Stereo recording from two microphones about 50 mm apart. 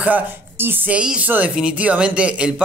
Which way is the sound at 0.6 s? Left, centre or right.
Right.